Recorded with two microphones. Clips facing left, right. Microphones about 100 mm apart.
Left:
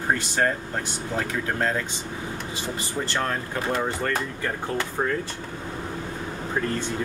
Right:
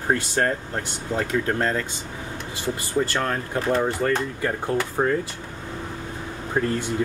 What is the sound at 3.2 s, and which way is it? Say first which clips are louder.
Speech: right 2 dB; 5° right (ahead or behind).